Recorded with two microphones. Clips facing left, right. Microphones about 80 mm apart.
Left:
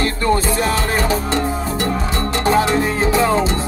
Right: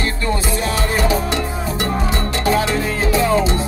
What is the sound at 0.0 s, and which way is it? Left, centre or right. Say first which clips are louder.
Music: left 4 dB; left.